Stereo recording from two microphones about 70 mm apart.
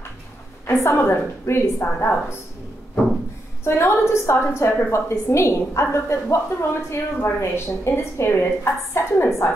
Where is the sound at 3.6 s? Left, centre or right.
Left.